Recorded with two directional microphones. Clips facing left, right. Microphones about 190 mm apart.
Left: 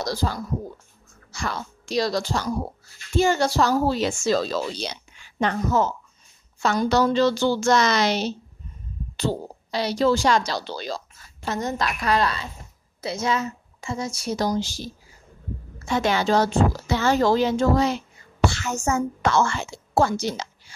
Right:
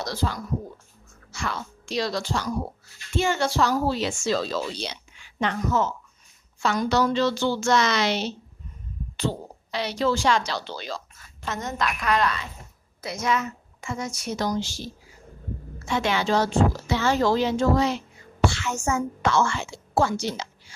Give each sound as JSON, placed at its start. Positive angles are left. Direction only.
{"t": 0.0, "sound": "speech", "side_deg": 35}
{"t": 9.7, "sound": "a woman's voice", "side_deg": 35}